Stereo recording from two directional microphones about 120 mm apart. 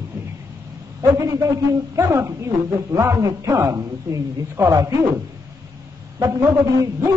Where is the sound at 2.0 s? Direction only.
25° right (ahead or behind).